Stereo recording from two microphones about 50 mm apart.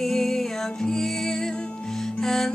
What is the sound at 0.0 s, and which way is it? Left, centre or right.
Music, centre.